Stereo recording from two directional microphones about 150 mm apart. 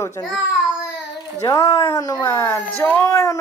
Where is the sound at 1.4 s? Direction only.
25° left (ahead or behind).